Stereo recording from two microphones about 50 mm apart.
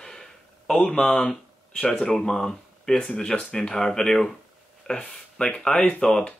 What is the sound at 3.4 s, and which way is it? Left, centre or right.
Speech, centre.